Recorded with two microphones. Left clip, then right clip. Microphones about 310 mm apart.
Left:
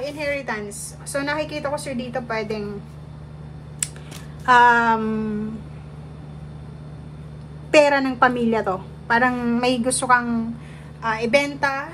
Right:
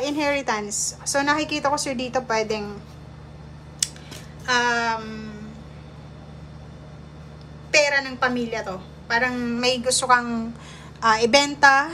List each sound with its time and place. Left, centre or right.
0.0 s a woman's voice: centre
4.5 s a sound: centre
7.7 s a woman's voice: centre